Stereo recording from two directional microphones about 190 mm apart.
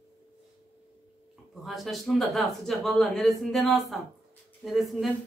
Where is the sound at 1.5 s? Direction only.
Centre (ahead or behind).